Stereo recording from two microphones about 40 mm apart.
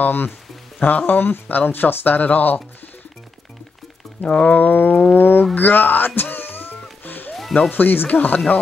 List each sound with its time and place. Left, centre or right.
0.0 s speech: left
4.2 s speech: left
4.5 s speech: left
5.1 s a sound: left
7.7 s speech: left